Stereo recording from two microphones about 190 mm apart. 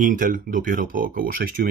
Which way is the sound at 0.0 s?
45° right (ahead or behind).